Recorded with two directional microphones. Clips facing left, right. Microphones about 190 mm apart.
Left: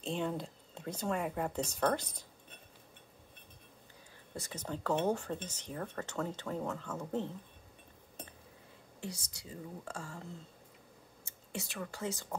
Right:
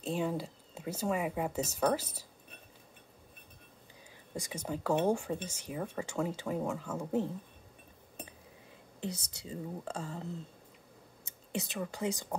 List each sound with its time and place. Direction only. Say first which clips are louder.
0.0 s speech: right 2 dB; 5° right (ahead or behind)
4.3 s speech: right 3 dB; 15° right (ahead or behind)
9.0 s speech: right 5 dB; 20° right (ahead or behind)
11.2 s speech: right 5 dB; 20° right (ahead or behind)